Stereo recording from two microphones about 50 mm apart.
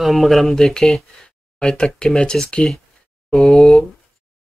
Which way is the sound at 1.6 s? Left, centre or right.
Centre.